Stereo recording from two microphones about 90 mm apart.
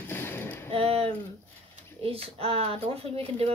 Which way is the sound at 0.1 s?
25° left (ahead or behind).